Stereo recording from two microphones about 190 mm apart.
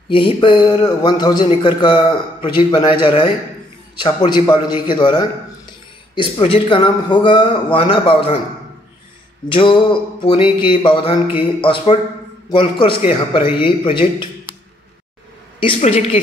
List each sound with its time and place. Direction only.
0.1 s a man's voice: 25° left (ahead or behind)
9.5 s a man's voice: 25° left (ahead or behind)
15.6 s a man's voice: 30° left (ahead or behind)